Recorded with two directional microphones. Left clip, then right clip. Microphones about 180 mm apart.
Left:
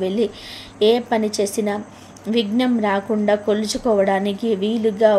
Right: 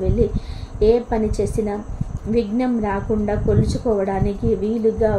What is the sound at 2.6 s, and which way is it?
A woman's voice, 40° left (ahead or behind).